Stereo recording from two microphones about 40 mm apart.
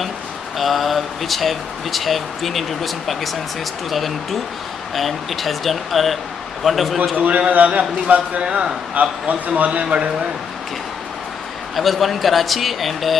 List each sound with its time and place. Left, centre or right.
0.6 s speech: centre
7.2 s a man's voice: right
8.4 s a man's voice: right
9.0 s a man's voice: right
9.8 s a man's voice: right
11.7 s speech: centre